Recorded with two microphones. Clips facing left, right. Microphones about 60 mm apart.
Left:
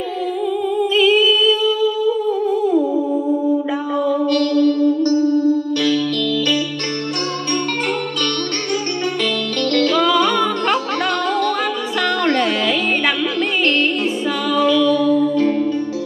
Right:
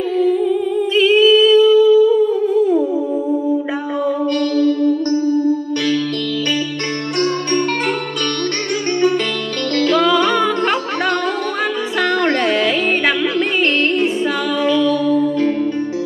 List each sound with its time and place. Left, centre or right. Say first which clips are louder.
0.9 s humming: right 4 dB; centre
4.0 s music: left 1 dB; centre
9.9 s music: right 4 dB; centre
12.3 s music: right 1 dB; centre
14.7 s music: even; right